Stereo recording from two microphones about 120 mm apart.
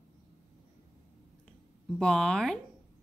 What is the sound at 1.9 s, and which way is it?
Speech, 5° left (ahead or behind).